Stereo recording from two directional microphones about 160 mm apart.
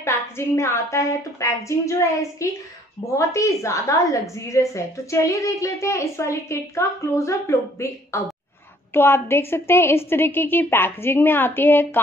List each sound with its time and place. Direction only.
0.0 s a woman's voice: 15° left (ahead or behind)